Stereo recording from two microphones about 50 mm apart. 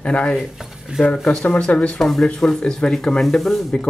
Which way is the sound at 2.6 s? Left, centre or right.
Centre.